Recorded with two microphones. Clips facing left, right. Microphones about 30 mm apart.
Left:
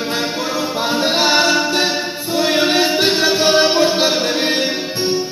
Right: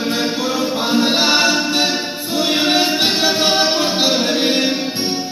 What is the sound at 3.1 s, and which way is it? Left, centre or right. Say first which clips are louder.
Music: left 2 dB; right.